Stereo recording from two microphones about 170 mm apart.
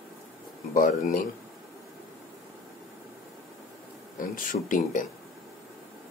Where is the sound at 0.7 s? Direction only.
50° left (ahead or behind).